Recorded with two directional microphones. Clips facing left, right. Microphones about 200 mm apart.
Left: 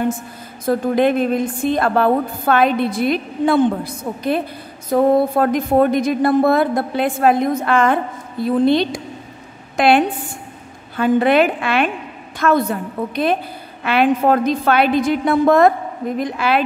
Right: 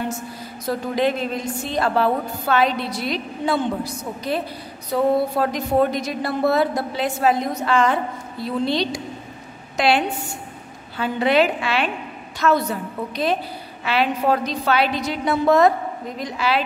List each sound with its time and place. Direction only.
0.7 s a woman's voice: 55° left (ahead or behind)